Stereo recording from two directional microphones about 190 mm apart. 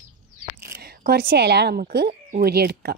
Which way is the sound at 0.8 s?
55° right (ahead or behind).